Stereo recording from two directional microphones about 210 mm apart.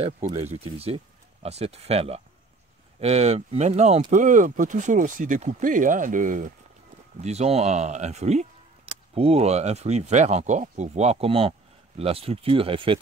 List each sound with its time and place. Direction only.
0.0 s speech: 30° right (ahead or behind)